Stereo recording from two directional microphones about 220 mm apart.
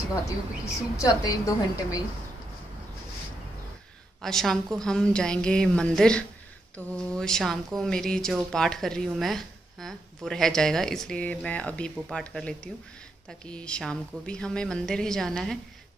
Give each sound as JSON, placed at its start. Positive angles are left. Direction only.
{"t": 0.9, "sound": "a woman's voice", "side_deg": 15}
{"t": 4.2, "sound": "speech", "side_deg": 0}